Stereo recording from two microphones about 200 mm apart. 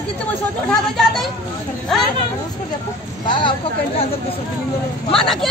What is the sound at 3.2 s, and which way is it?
Speech, 25° left (ahead or behind).